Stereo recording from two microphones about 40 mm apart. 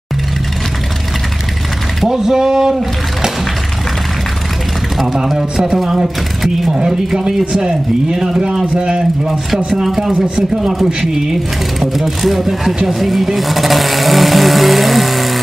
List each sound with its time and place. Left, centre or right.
2.0 s speech: centre
5.0 s a man's voice: centre; by 9.0 s right
9.7 s speech: centre
11.9 s speech: centre